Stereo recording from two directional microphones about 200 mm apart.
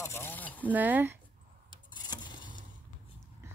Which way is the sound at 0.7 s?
10° right (ahead or behind).